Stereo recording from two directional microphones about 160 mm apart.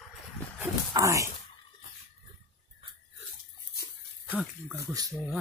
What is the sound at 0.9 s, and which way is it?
Speech, 20° right (ahead or behind).